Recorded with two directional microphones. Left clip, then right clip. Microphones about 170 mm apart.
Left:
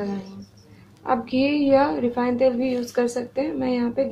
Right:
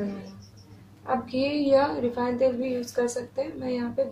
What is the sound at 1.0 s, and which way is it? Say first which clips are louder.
A woman's voice: left 5 dB; 40° left (ahead or behind).